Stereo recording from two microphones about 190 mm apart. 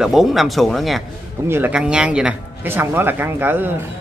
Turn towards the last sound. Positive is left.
turn(degrees=-10)  # may be behind; listen again after turning